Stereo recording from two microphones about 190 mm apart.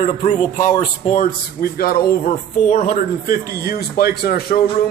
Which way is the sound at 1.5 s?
55° left (ahead or behind).